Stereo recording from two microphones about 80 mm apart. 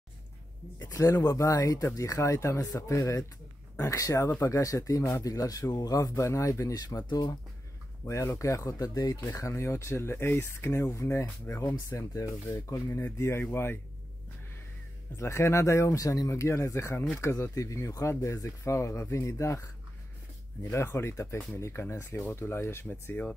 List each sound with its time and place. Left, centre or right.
0.7 s speech: left
8.0 s speech: left
13.0 s speech: left
15.1 s speech: left